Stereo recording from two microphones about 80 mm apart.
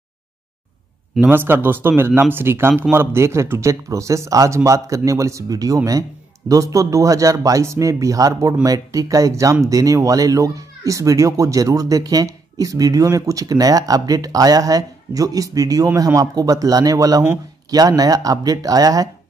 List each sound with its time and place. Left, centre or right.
1.2 s speech: right